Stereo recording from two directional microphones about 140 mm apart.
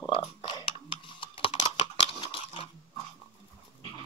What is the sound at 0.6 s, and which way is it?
Typing, 40° left (ahead or behind).